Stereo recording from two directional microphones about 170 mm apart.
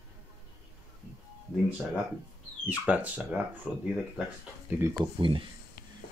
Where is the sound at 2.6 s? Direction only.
10° right (ahead or behind).